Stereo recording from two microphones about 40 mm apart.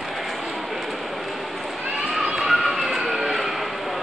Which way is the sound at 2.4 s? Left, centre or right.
Centre.